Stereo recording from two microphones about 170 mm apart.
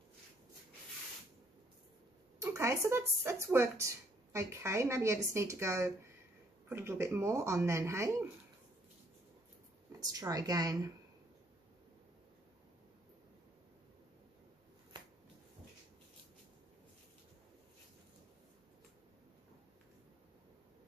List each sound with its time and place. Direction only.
2.3 s speech: 15° right (ahead or behind)
9.9 s speech: 20° right (ahead or behind)